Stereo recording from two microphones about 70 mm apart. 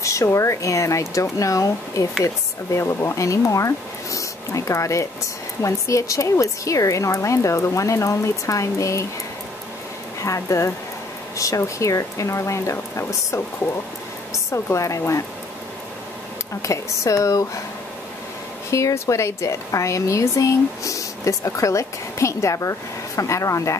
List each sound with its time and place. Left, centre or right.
0.0 s a woman's voice: left
10.2 s a woman's voice: left
14.5 s a woman's voice: left
16.6 s a woman's voice: left
18.7 s a woman's voice: left